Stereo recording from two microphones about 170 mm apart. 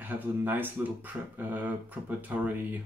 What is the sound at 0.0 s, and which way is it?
Speech, 10° right (ahead or behind).